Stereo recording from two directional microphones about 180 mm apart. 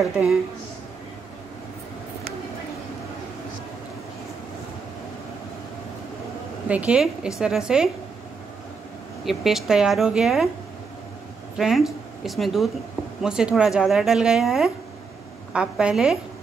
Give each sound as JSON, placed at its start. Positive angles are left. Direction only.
{"t": 0.0, "sound": "speech", "side_deg": 0}
{"t": 6.7, "sound": "speech", "side_deg": -5}
{"t": 9.2, "sound": "speech", "side_deg": 0}
{"t": 11.5, "sound": "speech", "side_deg": 0}